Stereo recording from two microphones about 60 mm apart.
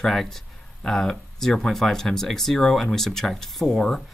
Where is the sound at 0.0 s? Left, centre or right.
Centre.